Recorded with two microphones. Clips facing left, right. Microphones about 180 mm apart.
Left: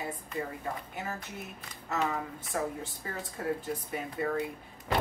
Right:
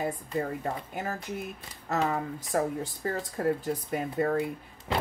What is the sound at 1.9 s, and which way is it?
Speech, 35° right (ahead or behind).